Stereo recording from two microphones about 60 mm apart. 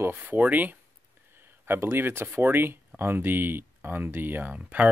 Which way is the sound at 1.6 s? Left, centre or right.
Right.